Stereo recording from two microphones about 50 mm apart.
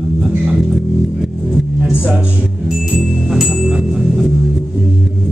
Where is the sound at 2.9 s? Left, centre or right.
Centre.